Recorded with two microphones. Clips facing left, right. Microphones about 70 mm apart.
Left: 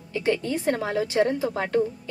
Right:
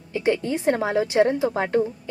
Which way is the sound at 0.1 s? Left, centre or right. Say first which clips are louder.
Right 2 dB; right.